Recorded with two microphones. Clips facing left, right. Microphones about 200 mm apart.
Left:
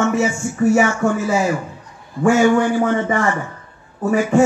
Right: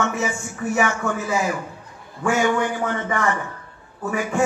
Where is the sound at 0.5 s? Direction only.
40° left (ahead or behind).